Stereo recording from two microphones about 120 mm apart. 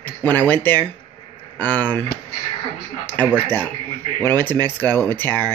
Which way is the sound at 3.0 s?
15° left (ahead or behind).